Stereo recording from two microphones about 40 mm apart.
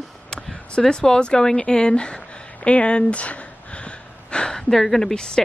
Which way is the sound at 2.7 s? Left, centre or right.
Left.